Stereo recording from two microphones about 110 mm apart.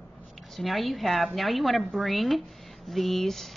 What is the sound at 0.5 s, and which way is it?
Speech, centre (ahead or behind).